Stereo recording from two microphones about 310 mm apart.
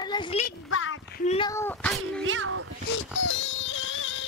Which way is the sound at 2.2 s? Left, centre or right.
Right.